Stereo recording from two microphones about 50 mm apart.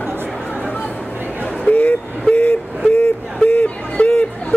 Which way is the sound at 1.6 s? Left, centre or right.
Left.